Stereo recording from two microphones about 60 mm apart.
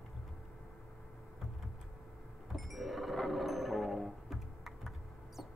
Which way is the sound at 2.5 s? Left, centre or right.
Centre.